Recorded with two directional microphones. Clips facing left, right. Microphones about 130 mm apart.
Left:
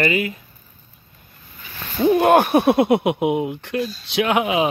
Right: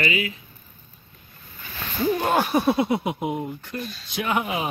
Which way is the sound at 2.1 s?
60° left (ahead or behind).